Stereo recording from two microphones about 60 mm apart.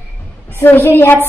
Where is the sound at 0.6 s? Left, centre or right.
Left.